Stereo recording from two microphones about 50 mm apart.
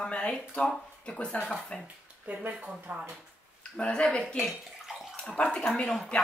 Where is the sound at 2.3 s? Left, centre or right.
Right.